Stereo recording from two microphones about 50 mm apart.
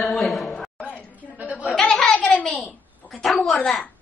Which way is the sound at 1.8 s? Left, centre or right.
Centre.